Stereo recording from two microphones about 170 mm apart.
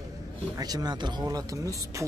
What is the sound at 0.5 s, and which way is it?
Speech, 25° right (ahead or behind).